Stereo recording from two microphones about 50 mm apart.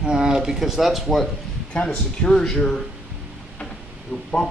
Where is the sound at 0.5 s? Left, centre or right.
Centre.